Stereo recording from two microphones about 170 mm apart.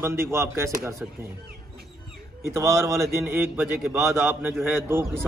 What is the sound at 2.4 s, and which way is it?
A man's voice, 15° right (ahead or behind).